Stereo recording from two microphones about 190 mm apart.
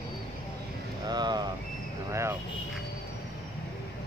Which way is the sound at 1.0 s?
20° right (ahead or behind).